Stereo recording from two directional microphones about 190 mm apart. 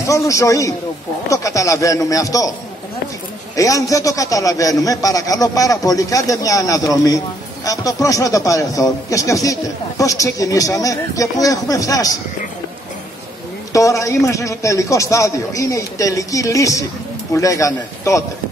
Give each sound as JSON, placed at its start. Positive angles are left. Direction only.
{"t": 0.0, "sound": "a man's voice", "side_deg": 15}
{"t": 3.5, "sound": "a man's voice", "side_deg": 15}
{"t": 13.7, "sound": "a man's voice", "side_deg": 15}